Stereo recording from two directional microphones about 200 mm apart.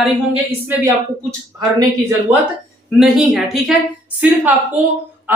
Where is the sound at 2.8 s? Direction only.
Centre (ahead or behind).